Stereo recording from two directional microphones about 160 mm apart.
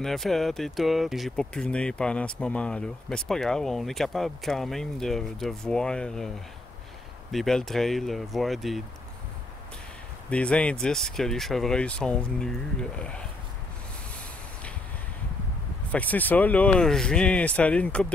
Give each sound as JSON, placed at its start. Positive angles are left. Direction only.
{"t": 0.0, "sound": "speech", "side_deg": 0}
{"t": 10.3, "sound": "speech", "side_deg": 5}
{"t": 15.9, "sound": "speech", "side_deg": 10}